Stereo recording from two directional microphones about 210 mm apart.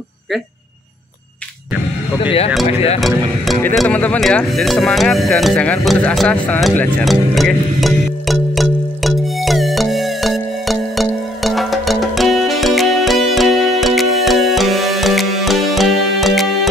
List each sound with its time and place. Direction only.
2.1 s speech: 25° left (ahead or behind)
3.0 s music: centre (ahead or behind)